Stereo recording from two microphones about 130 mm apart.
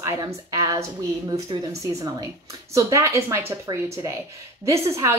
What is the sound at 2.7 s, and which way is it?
A woman's voice, 25° right (ahead or behind).